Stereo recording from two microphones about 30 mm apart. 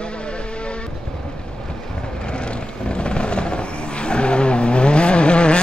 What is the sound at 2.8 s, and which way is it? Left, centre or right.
Vehicle, left.